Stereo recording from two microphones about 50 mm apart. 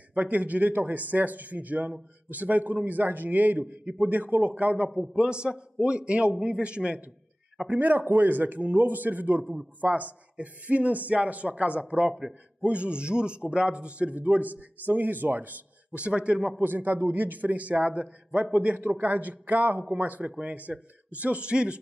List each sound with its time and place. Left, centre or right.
0.1 s a man's voice: right
5.1 s a man's voice: centre
7.8 s a man's voice: right
12.1 s a man's voice: centre
12.6 s a man's voice: right
16.6 s a man's voice: right